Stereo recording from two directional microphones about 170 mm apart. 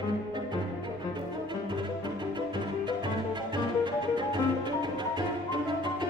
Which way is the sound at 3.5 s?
25° right (ahead or behind).